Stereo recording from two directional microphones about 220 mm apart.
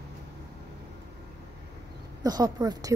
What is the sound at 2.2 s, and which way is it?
Speech, 15° right (ahead or behind).